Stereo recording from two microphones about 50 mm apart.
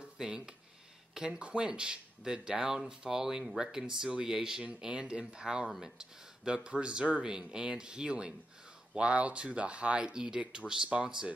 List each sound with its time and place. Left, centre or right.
0.2 s speech: centre
4.7 s speech: right
5.7 s speech: centre
5.9 s speech: centre